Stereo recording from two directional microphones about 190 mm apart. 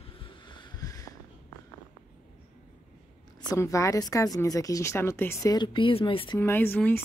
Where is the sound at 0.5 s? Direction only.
25° left (ahead or behind).